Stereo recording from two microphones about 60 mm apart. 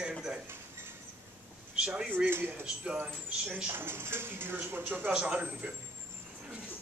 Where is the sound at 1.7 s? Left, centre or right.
Centre.